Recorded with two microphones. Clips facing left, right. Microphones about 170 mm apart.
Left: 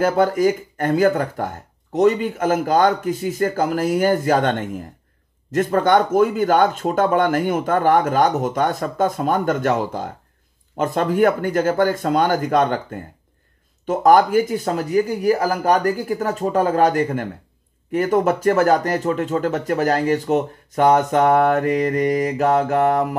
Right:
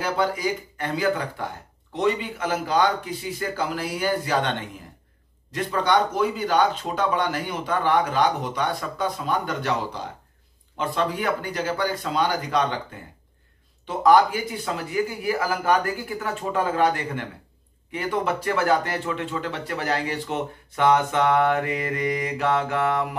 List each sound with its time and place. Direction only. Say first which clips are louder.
0.0 s speech: left 8 dB; 45° left (ahead or behind)